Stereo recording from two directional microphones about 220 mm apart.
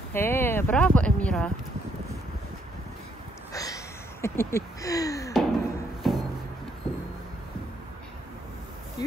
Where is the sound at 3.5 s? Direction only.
15° left (ahead or behind).